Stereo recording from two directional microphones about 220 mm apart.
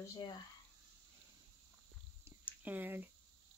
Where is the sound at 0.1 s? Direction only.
20° left (ahead or behind).